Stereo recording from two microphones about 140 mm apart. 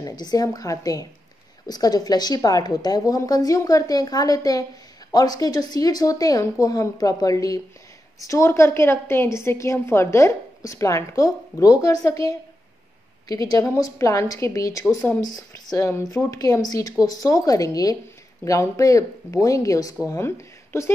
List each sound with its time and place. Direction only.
0.0 s a woman's voice: 30° left (ahead or behind)
13.3 s a woman's voice: 25° left (ahead or behind)